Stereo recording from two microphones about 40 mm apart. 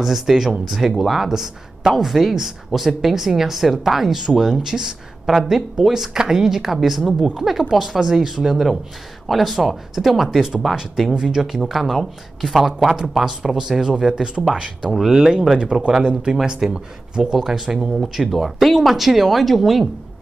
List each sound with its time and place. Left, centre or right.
0.0 s speech: centre; by 16.3 s right
16.6 s speech: centre
17.6 s speech: right
18.0 s speech: centre